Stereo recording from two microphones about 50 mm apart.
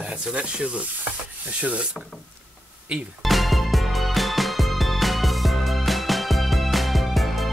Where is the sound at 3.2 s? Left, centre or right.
Centre.